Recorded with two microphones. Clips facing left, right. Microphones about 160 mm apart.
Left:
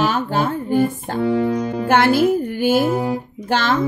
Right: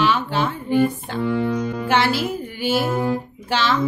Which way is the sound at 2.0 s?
50° left (ahead or behind).